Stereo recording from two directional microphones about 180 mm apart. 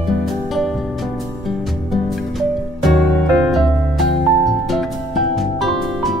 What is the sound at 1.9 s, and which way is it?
Music, centre (ahead or behind).